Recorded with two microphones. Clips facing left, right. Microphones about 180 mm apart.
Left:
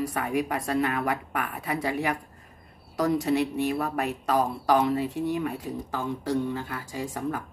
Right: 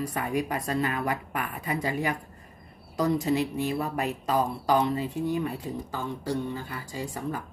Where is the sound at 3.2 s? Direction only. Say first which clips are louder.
Left 2 dB; 65° left (ahead or behind).